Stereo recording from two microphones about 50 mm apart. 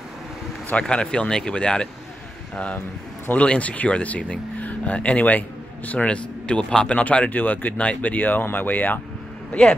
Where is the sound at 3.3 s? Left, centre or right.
Left.